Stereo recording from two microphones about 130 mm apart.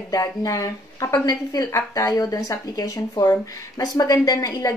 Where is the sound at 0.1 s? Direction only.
30° left (ahead or behind).